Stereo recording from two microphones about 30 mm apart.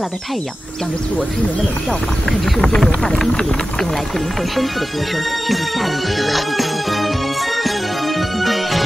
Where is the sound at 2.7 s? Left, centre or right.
Left.